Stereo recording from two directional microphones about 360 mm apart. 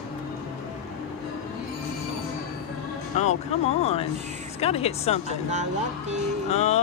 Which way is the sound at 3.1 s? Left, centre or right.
Centre.